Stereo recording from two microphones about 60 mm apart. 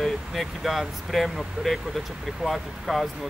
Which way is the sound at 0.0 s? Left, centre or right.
Centre.